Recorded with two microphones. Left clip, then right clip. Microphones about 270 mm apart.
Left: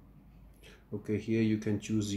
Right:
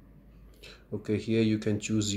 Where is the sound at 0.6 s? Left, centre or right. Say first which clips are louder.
Right 4 dB; centre.